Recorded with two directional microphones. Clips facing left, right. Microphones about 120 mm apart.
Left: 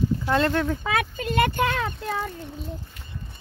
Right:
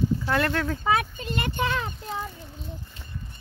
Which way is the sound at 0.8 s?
85° left.